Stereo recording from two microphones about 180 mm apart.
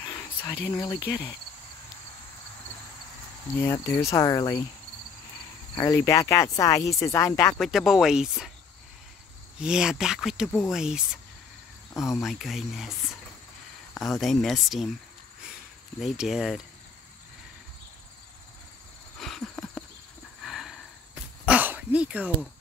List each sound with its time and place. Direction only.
0.0 s a sound: 15° left (ahead or behind)
3.6 s speech: 15° left (ahead or behind)
5.8 s speech: 15° left (ahead or behind)
7.5 s speech: centre (ahead or behind)
9.6 s speech: 5° right (ahead or behind)
12.0 s speech: centre (ahead or behind)
13.9 s speech: centre (ahead or behind)
16.0 s speech: 5° right (ahead or behind)
19.1 s a sound: centre (ahead or behind)